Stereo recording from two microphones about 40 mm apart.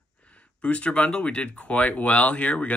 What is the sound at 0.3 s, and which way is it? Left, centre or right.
Speech, left.